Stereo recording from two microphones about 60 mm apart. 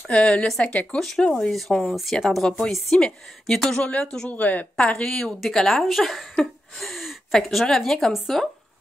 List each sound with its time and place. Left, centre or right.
0.1 s speech: centre
0.9 s speech: centre
4.3 s a woman's voice: left
5.0 s speech: centre
6.4 s gasp: centre
7.3 s a woman's voice: centre